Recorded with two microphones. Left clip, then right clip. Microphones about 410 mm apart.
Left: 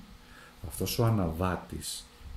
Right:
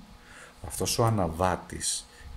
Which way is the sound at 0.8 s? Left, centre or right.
Centre.